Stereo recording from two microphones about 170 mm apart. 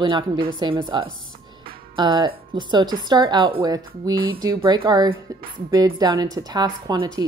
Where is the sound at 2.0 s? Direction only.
30° right (ahead or behind).